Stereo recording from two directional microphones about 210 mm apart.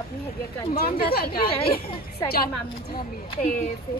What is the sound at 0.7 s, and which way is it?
Speech, 45° left (ahead or behind).